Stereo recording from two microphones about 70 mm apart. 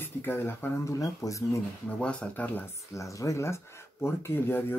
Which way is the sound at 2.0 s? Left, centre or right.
Centre.